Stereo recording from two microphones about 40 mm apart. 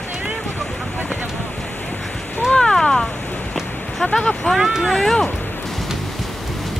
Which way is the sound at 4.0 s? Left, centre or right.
Left.